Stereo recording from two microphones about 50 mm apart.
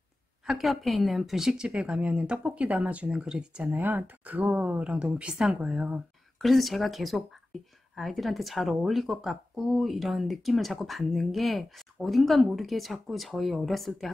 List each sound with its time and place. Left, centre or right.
0.5 s speech: centre
1.7 s speech: right
3.6 s speech: right
5.4 s a woman's voice: centre
5.7 s speech: right
6.3 s speech: centre